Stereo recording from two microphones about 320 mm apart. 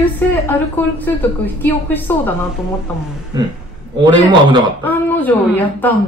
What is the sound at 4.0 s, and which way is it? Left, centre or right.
Speech, centre.